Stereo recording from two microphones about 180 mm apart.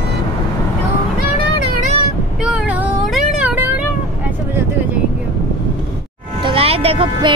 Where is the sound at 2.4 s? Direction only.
5° right (ahead or behind).